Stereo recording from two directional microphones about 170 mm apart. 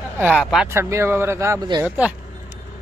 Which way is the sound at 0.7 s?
15° right (ahead or behind).